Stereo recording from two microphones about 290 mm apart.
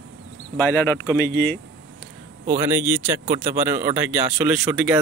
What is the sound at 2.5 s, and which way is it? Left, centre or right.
Speech, centre.